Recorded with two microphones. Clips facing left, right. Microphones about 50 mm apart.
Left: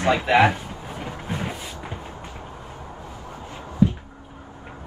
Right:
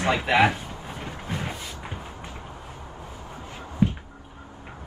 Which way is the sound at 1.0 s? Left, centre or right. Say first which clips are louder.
Left 3 dB; centre.